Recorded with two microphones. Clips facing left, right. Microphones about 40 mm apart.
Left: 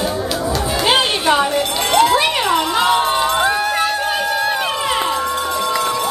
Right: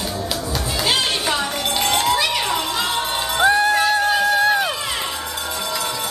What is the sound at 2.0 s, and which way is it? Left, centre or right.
Music, left.